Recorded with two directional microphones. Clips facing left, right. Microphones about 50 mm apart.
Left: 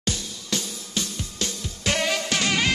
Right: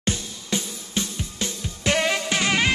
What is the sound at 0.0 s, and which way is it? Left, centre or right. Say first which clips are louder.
Music: right 2 dB; right.